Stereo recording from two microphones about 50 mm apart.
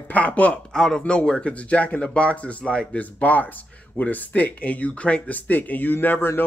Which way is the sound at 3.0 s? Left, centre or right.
Left.